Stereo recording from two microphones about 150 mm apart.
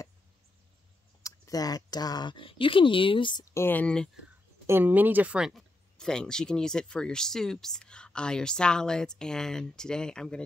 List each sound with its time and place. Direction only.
1.2 s speech: 25° left (ahead or behind)
3.5 s speech: 15° left (ahead or behind)
4.6 s speech: 15° right (ahead or behind); by 10.4 s 5° left (ahead or behind)